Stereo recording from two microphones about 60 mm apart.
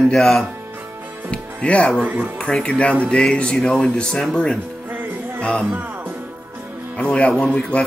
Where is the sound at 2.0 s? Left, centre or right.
Right.